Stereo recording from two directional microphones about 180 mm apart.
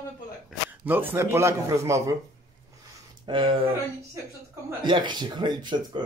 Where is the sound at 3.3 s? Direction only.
30° right (ahead or behind).